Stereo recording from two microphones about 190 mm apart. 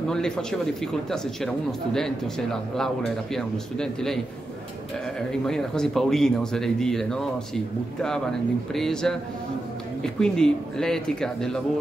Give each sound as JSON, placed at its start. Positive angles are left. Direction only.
{"t": 0.1, "sound": "speech", "side_deg": 5}
{"t": 5.3, "sound": "speech", "side_deg": 5}